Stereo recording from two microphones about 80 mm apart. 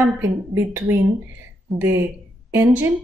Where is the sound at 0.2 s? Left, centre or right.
Right.